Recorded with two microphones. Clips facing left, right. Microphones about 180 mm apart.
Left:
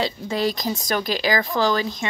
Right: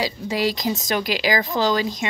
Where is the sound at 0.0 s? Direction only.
15° right (ahead or behind).